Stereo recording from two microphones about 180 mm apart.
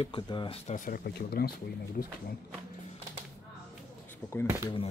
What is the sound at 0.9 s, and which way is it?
Speech, 60° left (ahead or behind).